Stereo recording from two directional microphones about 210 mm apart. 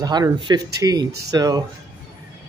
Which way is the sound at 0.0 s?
20° right (ahead or behind).